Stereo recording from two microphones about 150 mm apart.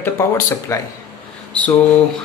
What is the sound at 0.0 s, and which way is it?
Speech, 20° left (ahead or behind).